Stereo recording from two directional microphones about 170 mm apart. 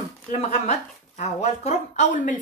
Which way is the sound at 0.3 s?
40° left (ahead or behind).